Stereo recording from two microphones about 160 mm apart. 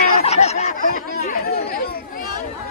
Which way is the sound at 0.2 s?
40° left (ahead or behind).